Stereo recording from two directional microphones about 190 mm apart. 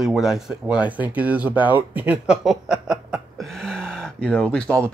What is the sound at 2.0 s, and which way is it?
Chuckle, 5° right (ahead or behind).